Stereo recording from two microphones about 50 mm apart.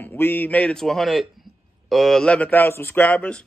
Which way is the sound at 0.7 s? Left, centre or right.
Centre.